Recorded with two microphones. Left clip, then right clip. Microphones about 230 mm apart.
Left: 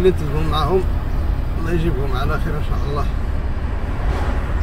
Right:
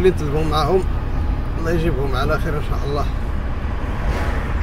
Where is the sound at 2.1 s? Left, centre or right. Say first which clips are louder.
Right 3 dB; right.